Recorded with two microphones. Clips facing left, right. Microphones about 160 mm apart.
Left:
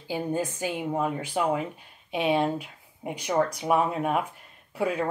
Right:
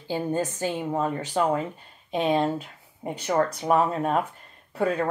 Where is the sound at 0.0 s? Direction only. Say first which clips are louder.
Right 2 dB; 10° left (ahead or behind).